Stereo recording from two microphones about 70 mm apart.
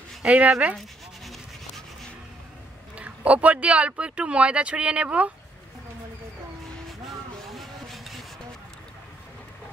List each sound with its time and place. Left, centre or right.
0.2 s speech: right
0.7 s a sound: centre
3.0 s speech: centre
7.4 s vehicle: centre